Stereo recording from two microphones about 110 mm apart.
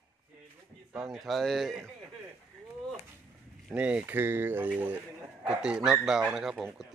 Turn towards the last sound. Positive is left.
turn(degrees=0)  # may be behind; listen again after turning